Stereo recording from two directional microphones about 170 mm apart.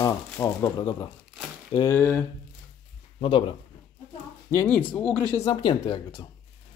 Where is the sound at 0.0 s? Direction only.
20° left (ahead or behind).